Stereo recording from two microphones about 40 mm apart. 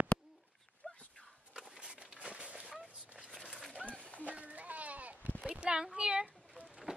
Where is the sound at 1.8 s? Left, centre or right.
Right.